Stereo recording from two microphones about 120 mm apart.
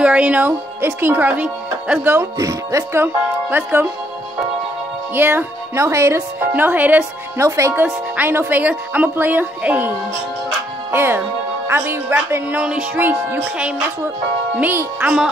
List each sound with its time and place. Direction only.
0.0 s speech: 10° right (ahead or behind)
2.3 s speech: 25° right (ahead or behind)
5.1 s speech: 15° right (ahead or behind)